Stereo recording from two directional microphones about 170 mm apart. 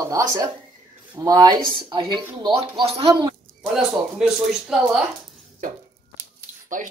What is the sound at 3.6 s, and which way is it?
Speech, centre (ahead or behind).